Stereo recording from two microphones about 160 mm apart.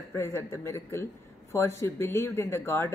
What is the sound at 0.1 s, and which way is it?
Speech, 15° left (ahead or behind).